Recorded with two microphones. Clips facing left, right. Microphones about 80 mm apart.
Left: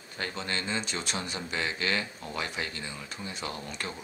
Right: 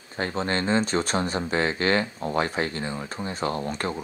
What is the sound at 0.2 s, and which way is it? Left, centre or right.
Speech, right.